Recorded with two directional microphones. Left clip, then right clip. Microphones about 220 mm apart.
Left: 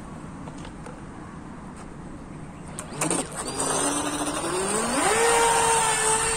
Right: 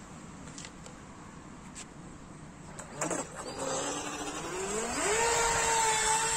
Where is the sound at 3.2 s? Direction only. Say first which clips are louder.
Left 8 dB; 45° left (ahead or behind); by 6.3 s 15° left (ahead or behind).